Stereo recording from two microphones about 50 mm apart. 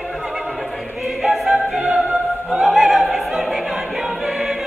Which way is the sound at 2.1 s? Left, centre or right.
Centre.